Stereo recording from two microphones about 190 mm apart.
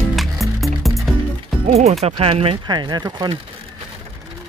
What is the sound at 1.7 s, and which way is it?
Speech, 35° right (ahead or behind).